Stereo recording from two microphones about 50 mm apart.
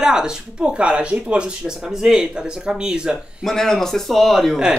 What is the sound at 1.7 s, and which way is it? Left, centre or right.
Speech, centre.